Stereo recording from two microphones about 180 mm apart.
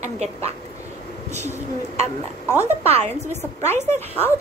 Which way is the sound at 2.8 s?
35° right (ahead or behind).